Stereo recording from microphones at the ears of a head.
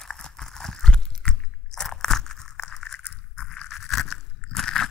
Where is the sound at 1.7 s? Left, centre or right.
Left.